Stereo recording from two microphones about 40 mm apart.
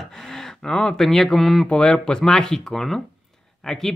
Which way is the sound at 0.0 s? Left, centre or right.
Centre.